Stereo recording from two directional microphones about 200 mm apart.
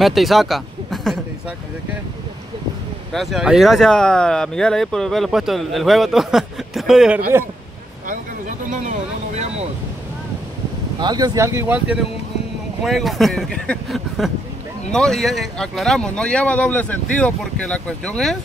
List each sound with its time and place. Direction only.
0.0 s speech: centre (ahead or behind)
3.1 s speech: centre (ahead or behind)
8.1 s a sound: 40° right (ahead or behind)
11.0 s speech: 20° right (ahead or behind)
12.8 s speech: centre (ahead or behind)